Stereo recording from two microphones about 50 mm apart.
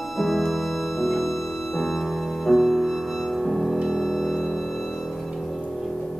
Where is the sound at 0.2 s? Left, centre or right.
Centre.